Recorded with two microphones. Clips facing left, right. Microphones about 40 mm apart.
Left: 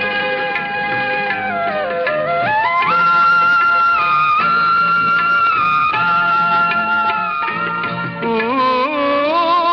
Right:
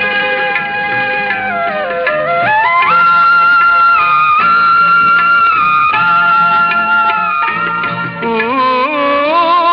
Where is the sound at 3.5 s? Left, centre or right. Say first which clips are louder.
Right 5 dB; right.